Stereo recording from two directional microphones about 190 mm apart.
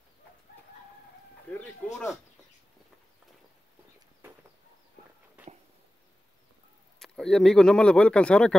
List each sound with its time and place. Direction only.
1.6 s speech: 5° left (ahead or behind)
7.0 s speech: centre (ahead or behind)